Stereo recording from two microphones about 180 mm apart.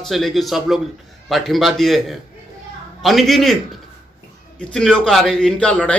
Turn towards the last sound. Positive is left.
turn(degrees=5)  # may be behind; listen again after turning